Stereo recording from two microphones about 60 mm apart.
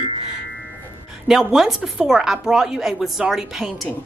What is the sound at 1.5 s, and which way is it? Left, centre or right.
A woman's voice, centre.